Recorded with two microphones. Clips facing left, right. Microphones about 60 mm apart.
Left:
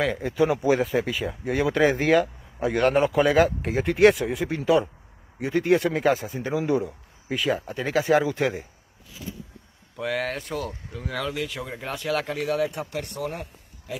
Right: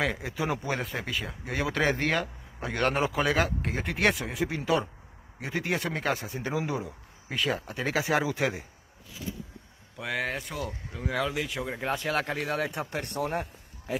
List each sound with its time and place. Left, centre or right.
0.0 s speech: centre
9.9 s speech: centre
10.6 s speech: centre; by 13.9 s right